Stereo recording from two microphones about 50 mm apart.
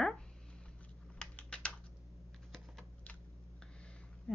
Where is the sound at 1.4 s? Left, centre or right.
Left.